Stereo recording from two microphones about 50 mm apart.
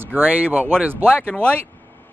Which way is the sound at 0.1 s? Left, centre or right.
Right.